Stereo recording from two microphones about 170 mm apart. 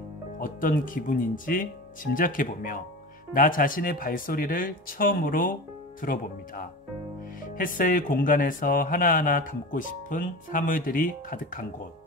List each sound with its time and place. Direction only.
0.4 s speech: 55° left (ahead or behind)